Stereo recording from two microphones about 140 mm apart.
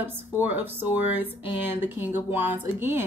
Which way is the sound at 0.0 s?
15° right (ahead or behind).